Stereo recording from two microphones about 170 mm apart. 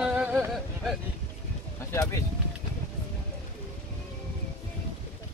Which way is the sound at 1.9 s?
15° left (ahead or behind).